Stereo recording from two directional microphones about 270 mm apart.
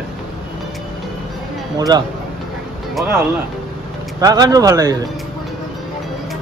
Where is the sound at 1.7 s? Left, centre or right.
Centre.